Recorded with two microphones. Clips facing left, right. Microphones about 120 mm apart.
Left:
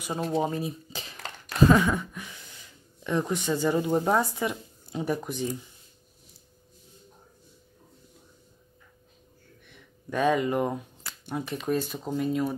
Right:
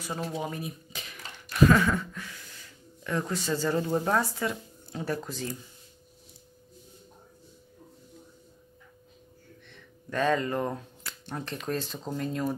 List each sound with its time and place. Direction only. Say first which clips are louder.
0.0 s speech: left 6 dB; 20° left (ahead or behind)
1.7 s a sound: left 2 dB; 15° left (ahead or behind)
3.0 s speech: left 3 dB; 20° left (ahead or behind)
9.7 s speech: left 3 dB; 15° left (ahead or behind)